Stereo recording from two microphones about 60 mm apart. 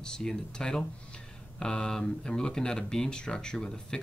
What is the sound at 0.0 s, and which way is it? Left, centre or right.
Speech, centre.